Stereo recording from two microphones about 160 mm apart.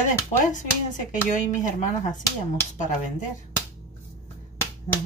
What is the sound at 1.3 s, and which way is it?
Speech, 50° left (ahead or behind).